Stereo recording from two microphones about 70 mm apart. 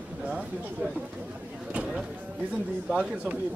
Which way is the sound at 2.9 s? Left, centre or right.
Centre.